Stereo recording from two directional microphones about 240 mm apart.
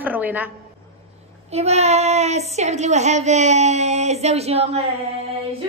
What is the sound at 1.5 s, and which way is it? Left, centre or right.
Speech, right.